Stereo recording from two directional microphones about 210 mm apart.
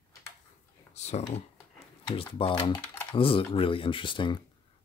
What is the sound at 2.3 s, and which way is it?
Speech, 20° left (ahead or behind).